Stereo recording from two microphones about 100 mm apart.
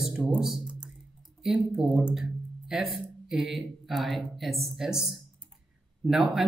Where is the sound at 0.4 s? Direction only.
5° right (ahead or behind).